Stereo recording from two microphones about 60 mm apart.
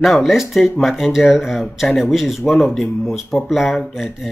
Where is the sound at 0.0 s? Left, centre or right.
Centre.